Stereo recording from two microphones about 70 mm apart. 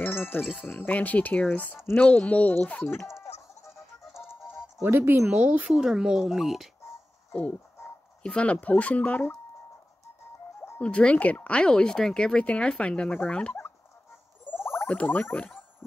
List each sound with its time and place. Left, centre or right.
0.0 s jingle: left
0.4 s music: centre
0.8 s speech: left
3.1 s music: centre
4.9 s speech: right
5.2 s speech: centre
5.7 s speech: centre
8.2 s speech: centre
10.8 s speech: centre
14.5 s a sound: centre
14.9 s speech: left